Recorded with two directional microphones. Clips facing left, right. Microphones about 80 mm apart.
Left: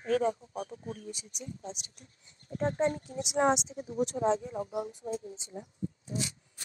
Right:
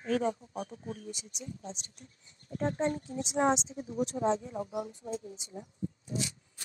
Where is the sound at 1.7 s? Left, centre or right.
Right.